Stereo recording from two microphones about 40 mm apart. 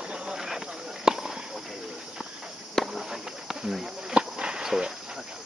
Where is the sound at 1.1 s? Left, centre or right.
Centre.